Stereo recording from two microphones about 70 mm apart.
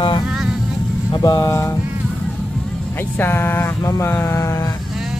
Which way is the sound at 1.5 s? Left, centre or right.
Left.